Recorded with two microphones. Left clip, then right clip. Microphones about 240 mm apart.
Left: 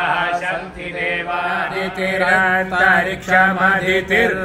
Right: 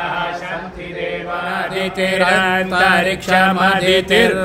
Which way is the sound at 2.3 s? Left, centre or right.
Right.